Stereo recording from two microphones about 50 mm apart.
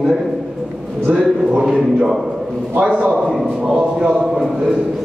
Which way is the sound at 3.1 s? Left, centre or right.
Centre.